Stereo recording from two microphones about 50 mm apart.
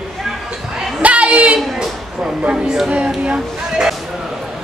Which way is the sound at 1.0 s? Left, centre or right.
Right.